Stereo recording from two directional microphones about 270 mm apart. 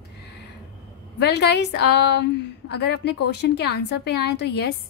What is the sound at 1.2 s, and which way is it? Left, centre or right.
A woman's voice, left.